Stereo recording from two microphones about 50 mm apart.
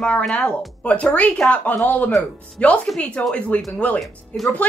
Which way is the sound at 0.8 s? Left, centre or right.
Left.